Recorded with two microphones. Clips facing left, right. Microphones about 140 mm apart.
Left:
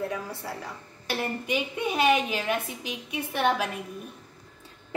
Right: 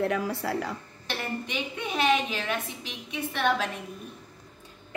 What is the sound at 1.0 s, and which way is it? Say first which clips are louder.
A woman's voice: left 3 dB; 10° left (ahead or behind).